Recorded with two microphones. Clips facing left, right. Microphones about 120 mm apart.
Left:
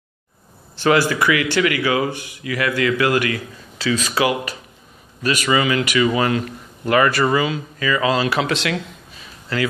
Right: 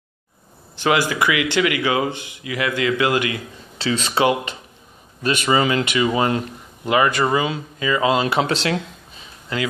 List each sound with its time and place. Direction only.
0.7 s speech: 15° right (ahead or behind); by 8.8 s 30° right (ahead or behind)
9.5 s speech: 20° right (ahead or behind)